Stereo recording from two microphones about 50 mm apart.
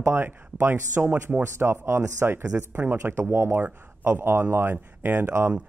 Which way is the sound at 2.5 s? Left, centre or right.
Right.